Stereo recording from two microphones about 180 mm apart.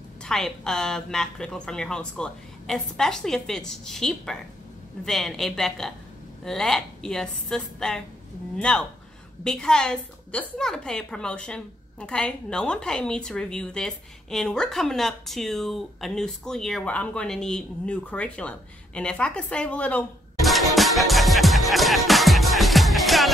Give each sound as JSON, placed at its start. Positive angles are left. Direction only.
{"t": 0.2, "sound": "a woman's voice", "side_deg": 5}